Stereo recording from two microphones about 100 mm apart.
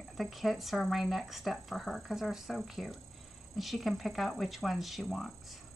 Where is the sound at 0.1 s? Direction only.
Centre (ahead or behind).